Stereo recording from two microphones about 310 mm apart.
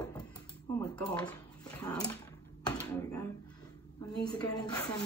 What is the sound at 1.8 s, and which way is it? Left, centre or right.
Dog, centre.